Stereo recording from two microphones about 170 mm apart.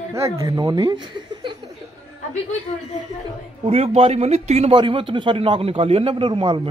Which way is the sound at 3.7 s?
35° right (ahead or behind).